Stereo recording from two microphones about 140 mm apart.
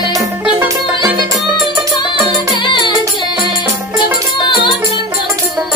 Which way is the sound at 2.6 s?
35° left (ahead or behind).